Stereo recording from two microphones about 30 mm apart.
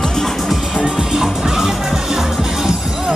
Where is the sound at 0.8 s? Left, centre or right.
Centre.